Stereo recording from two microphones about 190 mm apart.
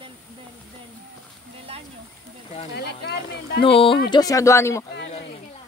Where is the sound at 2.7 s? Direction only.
60° left (ahead or behind).